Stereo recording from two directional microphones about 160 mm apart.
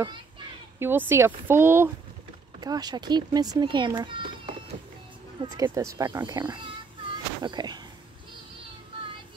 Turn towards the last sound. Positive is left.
turn(degrees=-25)  # may be behind; listen again after turning